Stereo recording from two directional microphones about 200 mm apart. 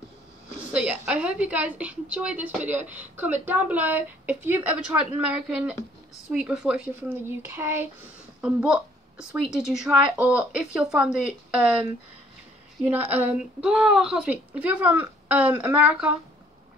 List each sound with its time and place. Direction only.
0.7 s a woman's voice: 5° right (ahead or behind)